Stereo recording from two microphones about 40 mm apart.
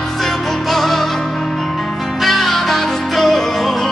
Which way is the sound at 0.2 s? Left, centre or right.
Centre.